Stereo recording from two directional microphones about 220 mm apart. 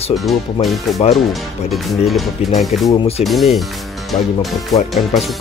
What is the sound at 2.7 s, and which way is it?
Speech, 30° left (ahead or behind).